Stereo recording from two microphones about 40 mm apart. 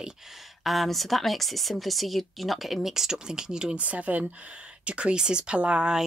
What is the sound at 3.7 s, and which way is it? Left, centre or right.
Speech, right.